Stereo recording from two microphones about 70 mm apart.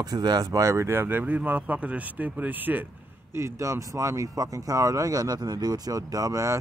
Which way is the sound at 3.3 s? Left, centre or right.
Right.